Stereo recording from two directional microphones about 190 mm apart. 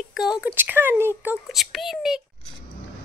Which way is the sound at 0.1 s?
Centre (ahead or behind).